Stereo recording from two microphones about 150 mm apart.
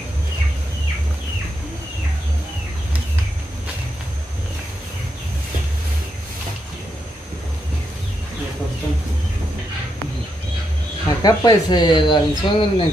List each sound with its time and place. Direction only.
11.1 s speech: 25° left (ahead or behind)